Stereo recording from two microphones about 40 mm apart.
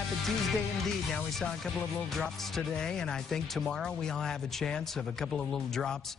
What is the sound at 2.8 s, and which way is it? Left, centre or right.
Speech, centre.